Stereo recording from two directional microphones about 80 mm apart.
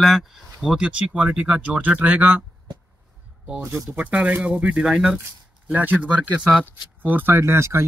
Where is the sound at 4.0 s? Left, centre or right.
Centre.